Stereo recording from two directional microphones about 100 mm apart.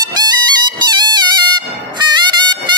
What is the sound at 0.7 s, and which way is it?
Music, 45° right (ahead or behind).